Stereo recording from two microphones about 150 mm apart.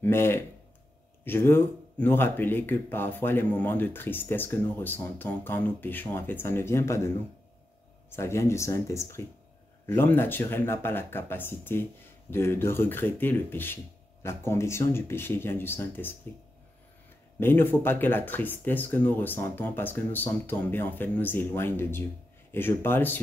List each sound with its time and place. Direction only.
0.0 s speech: 15° left (ahead or behind)
8.2 s speech: 20° left (ahead or behind)
17.4 s speech: 15° left (ahead or behind)